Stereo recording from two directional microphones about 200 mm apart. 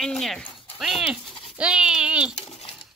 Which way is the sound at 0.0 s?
Centre (ahead or behind).